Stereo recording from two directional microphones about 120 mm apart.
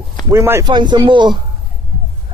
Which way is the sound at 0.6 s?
40° right (ahead or behind).